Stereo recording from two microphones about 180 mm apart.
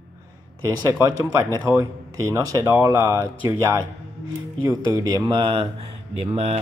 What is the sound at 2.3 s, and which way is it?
Speech, 15° right (ahead or behind).